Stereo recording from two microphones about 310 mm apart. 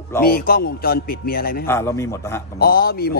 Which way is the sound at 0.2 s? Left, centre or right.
Left.